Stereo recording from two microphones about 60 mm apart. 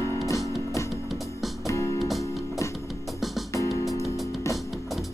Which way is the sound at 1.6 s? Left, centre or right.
Left.